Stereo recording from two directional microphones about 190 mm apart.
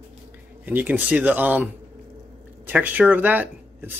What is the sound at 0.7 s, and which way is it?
Speech, 10° right (ahead or behind).